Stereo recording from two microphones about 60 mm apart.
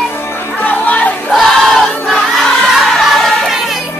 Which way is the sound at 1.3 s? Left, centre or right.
Centre.